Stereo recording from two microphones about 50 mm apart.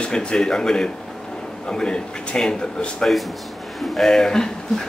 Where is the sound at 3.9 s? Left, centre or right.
Centre.